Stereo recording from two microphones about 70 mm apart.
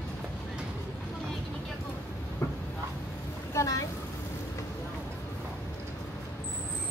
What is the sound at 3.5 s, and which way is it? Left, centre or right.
Vehicle, left.